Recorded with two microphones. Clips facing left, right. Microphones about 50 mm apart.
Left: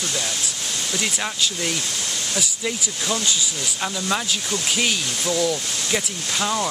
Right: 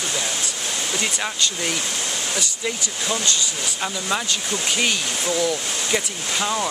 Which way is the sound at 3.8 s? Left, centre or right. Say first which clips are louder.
Left 1 dB; centre.